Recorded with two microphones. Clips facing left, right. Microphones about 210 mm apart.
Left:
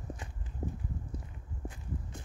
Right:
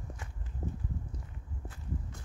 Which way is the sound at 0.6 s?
15° left (ahead or behind).